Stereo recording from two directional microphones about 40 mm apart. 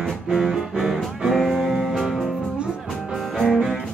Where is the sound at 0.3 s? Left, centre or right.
Centre.